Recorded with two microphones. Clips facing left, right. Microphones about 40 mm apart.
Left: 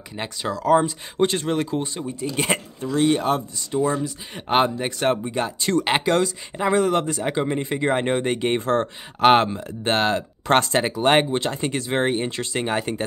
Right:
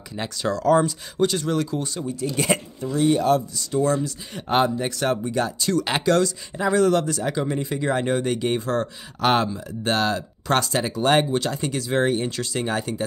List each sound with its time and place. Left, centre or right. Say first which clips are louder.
0.1 s speech: right 2 dB; left
0.8 s speech: left 1 dB; left
2.8 s speech: left 1 dB; left
3.3 s speech: right 2 dB; left
3.8 s speech: right 1 dB; left